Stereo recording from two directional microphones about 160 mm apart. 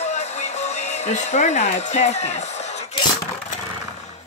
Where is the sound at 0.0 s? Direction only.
45° left (ahead or behind).